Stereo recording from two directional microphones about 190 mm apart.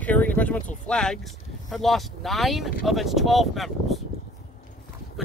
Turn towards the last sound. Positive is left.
turn(degrees=0)  # may be behind; listen again after turning